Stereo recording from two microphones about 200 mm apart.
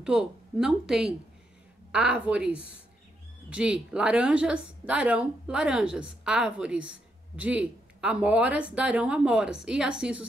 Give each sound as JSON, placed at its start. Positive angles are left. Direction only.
{"t": 0.0, "sound": "speech", "side_deg": -5}